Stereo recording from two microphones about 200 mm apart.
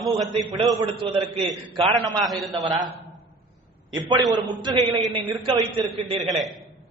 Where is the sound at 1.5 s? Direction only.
30° right (ahead or behind).